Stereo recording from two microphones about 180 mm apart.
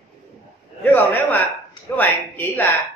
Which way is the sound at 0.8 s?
10° left (ahead or behind).